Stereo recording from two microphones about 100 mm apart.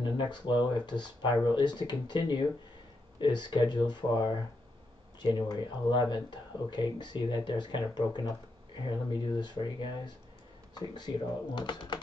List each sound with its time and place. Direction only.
0.0 s speech: 50° left (ahead or behind)